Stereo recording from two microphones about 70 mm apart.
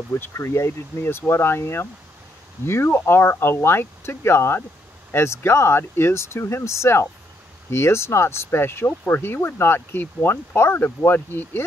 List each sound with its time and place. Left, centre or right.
0.1 s speech: left